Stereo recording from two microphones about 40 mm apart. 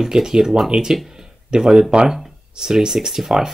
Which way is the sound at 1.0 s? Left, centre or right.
Centre.